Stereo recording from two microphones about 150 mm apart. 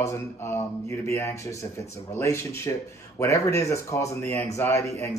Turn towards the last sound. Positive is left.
turn(degrees=20)  # may be behind; listen again after turning